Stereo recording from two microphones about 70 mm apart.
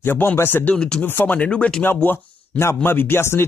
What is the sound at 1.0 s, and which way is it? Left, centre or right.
Speech, left.